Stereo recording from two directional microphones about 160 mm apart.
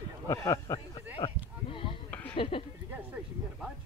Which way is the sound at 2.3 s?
30° left (ahead or behind).